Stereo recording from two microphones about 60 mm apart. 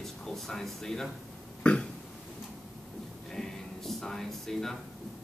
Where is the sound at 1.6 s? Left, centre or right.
Centre.